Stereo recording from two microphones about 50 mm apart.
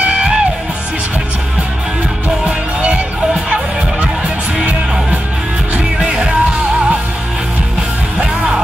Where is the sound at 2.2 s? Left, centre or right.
Right.